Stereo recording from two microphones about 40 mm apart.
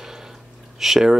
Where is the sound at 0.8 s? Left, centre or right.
Centre.